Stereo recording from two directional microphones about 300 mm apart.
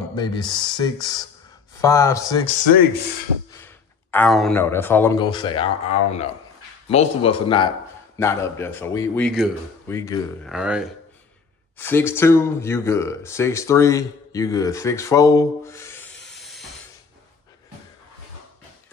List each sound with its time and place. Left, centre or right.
0.1 s a man's voice: centre
3.5 s a man's voice: centre
10.5 s speech: centre
11.8 s speech: centre